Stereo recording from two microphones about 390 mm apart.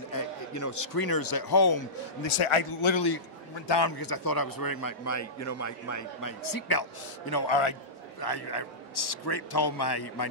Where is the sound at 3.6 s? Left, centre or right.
Left.